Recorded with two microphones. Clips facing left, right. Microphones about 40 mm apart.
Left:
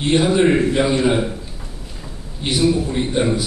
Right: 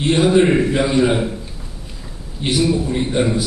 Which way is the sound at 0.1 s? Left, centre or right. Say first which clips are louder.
Right 2 dB; centre.